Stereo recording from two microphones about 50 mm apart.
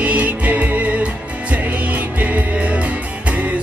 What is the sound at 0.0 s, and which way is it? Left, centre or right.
Music, right.